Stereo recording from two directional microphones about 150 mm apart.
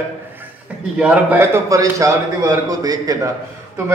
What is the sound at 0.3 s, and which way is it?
A man's voice, 10° right (ahead or behind).